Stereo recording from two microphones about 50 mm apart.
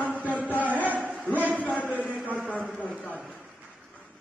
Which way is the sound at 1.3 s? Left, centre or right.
Right.